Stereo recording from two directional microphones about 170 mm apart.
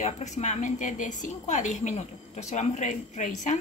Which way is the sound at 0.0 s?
45° left (ahead or behind).